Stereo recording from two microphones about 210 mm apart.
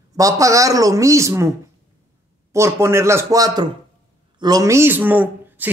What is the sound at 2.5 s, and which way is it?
Speech, 15° right (ahead or behind).